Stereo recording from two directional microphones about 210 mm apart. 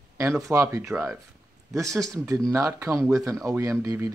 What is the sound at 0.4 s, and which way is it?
Speech, 15° right (ahead or behind).